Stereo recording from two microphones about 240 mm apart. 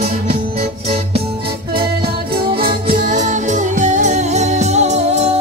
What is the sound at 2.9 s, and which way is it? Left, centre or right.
Music, right.